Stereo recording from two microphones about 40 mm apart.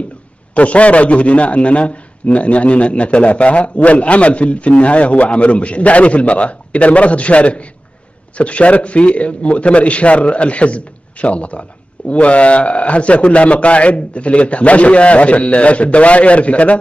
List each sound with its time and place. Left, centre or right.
0.6 s a man's voice: left